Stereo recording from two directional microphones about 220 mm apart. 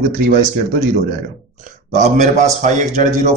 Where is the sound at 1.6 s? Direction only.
30° right (ahead or behind).